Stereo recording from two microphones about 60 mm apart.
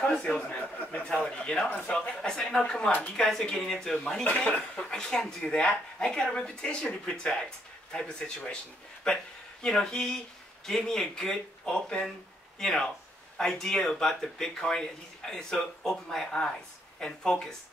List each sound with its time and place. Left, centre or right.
0.0 s a man's voice: centre
1.0 s speech: centre